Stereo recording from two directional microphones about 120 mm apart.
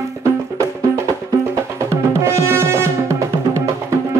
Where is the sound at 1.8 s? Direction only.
25° right (ahead or behind).